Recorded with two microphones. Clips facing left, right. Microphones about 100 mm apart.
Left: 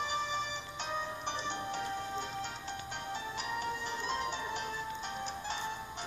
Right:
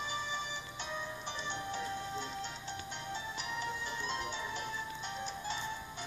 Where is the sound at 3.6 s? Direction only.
40° left (ahead or behind).